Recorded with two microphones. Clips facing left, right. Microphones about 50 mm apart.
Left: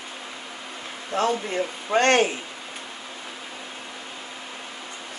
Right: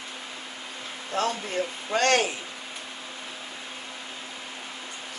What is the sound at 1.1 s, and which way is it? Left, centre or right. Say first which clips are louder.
Speech: left 4 dB; left.